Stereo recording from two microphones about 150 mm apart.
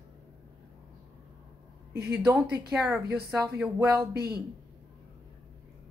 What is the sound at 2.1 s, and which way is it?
A woman's voice, 15° right (ahead or behind).